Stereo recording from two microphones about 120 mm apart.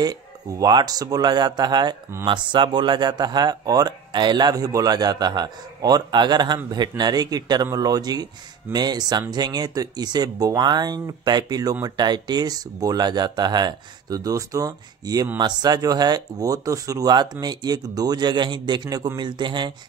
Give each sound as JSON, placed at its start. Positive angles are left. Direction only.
{"t": 0.0, "sound": "speech", "side_deg": -30}